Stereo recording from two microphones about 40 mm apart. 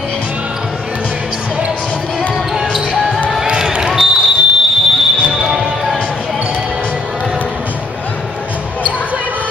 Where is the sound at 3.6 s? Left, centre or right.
Centre.